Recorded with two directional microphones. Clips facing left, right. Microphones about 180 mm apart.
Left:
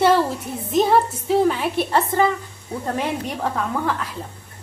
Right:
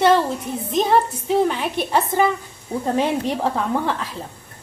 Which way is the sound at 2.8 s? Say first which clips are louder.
Right 4 dB; 25° right (ahead or behind).